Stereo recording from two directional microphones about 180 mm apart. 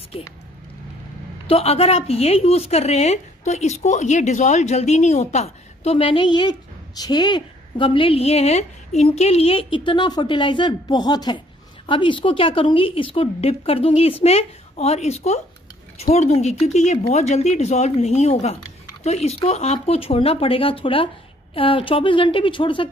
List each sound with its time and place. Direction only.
1.5 s a woman's voice: 35° left (ahead or behind)